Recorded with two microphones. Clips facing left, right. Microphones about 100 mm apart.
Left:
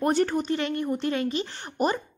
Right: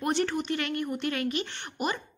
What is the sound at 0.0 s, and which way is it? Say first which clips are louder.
Speech: left 4 dB; 40° left (ahead or behind).